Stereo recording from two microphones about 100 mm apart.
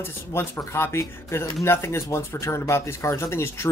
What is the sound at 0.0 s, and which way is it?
Speech, 25° left (ahead or behind).